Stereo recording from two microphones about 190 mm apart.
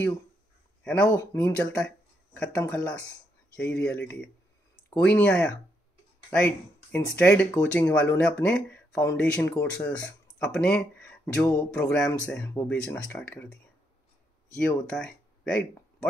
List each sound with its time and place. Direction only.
0.8 s speech: 5° left (ahead or behind)
14.6 s speech: 5° left (ahead or behind)